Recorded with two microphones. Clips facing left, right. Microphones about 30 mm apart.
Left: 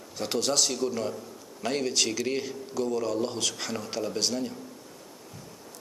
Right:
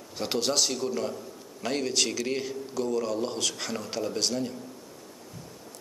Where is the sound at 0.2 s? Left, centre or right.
Centre.